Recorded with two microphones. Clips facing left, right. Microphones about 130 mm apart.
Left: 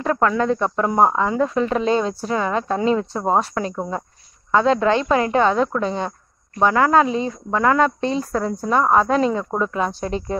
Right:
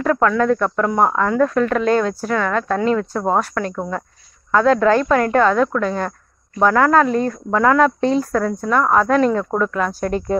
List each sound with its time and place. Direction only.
0.0 s speech: 10° left (ahead or behind)
6.6 s speech: 10° left (ahead or behind)